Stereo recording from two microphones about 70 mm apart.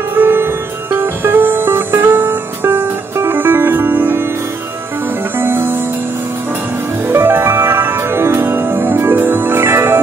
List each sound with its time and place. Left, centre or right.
0.1 s music: right
5.4 s music: right
7.1 s music: right